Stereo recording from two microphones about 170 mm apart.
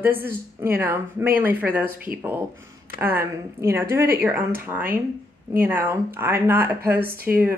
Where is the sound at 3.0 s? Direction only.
15° right (ahead or behind).